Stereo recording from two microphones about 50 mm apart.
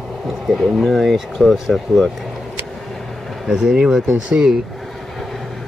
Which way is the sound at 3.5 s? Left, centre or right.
Centre.